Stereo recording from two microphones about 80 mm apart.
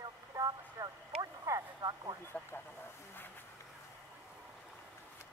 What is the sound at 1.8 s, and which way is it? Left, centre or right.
Speech, right.